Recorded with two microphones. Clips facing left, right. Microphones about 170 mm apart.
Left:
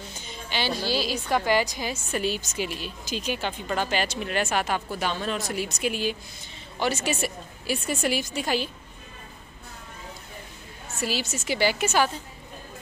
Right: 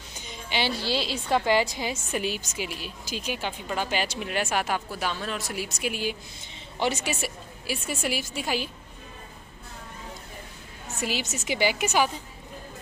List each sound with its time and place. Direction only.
0.1 s a woman's voice: 20° right (ahead or behind)
2.1 s a woman's voice: 10° right (ahead or behind)
7.1 s a woman's voice: 5° right (ahead or behind)
11.0 s speech: 20° right (ahead or behind)